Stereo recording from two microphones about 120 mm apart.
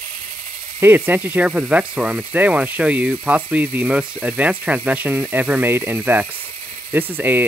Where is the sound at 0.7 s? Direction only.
15° right (ahead or behind).